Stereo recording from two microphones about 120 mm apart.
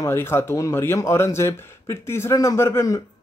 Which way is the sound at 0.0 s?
20° left (ahead or behind).